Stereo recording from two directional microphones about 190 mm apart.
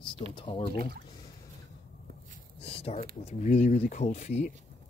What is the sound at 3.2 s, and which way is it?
Speech, 35° left (ahead or behind).